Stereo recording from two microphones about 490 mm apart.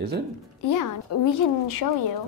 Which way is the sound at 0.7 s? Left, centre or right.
Left.